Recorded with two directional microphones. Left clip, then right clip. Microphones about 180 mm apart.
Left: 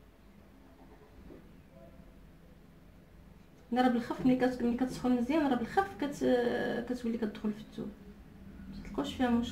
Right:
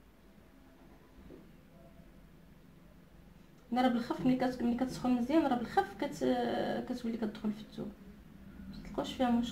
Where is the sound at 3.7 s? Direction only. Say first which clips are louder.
Left 2 dB; 20° right (ahead or behind).